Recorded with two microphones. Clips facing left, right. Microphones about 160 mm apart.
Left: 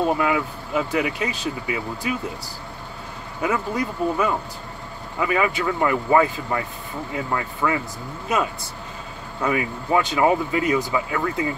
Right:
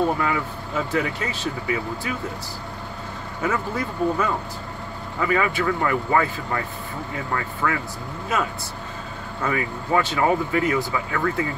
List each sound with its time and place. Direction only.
0.2 s speech: 15° left (ahead or behind)
3.4 s speech: 15° left (ahead or behind)